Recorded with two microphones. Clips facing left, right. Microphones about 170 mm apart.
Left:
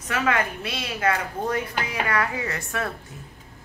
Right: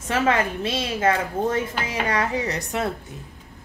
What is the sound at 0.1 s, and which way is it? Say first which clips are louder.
A woman's voice: right 3 dB; 30° right (ahead or behind).